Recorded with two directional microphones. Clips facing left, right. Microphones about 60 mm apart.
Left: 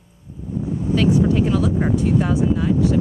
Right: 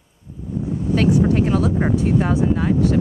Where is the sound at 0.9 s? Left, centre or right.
Right.